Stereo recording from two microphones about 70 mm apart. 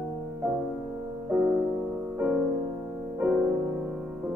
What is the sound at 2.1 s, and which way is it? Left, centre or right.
Music, right.